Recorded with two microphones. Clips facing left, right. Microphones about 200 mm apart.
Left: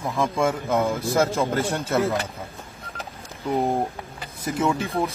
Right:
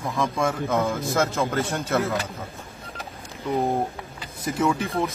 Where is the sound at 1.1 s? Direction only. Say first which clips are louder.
Left 3 dB; 30° left (ahead or behind).